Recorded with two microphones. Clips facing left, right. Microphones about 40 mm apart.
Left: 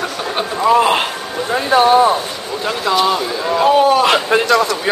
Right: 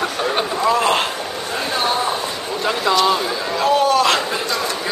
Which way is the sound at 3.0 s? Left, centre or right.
Centre.